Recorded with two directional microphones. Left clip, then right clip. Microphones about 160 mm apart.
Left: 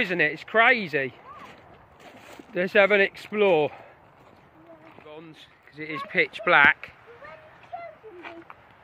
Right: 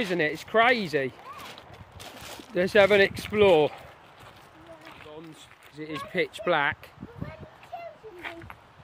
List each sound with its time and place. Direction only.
0.0 s speech: 30° right (ahead or behind)
2.5 s speech: 35° right (ahead or behind)
5.8 s speech: 30° right (ahead or behind)